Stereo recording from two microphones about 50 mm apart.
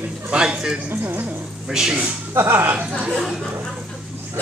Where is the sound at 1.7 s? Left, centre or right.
Centre.